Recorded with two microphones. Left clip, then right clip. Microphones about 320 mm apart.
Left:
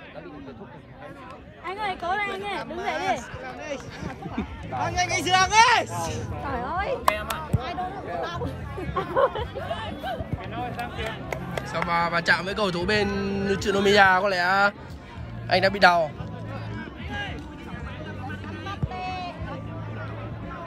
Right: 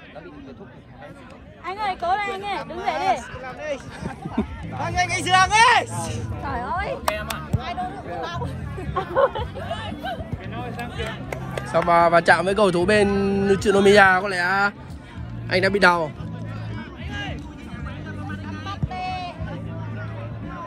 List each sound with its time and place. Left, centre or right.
1.7 s speech: right
7.1 s speech: centre
7.5 s a sound: right
8.9 s speech: right
10.5 s speech: left
11.7 s speech: centre
16.7 s music: centre
18.7 s music: right